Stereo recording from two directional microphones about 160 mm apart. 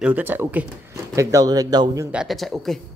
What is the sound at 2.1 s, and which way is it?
Speech, 5° right (ahead or behind).